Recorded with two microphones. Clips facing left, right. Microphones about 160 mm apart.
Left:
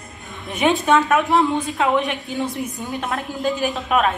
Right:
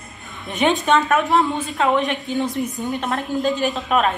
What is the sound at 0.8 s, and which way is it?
Speech, 15° left (ahead or behind).